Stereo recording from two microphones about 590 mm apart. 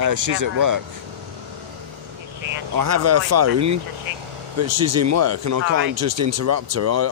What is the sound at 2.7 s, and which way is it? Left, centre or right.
Speech, right.